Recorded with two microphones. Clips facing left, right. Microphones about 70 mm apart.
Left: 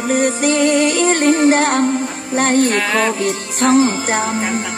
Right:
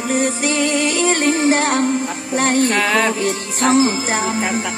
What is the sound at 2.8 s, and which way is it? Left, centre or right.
Music, centre.